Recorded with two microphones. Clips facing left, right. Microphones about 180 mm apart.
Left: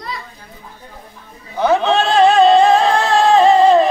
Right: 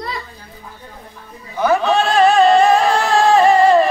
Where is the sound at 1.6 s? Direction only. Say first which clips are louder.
Left 1 dB; 20° left (ahead or behind).